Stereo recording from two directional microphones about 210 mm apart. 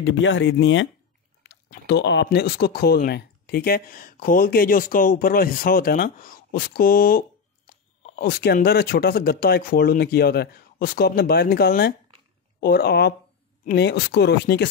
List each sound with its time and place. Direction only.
0.0 s speech: 60° left (ahead or behind)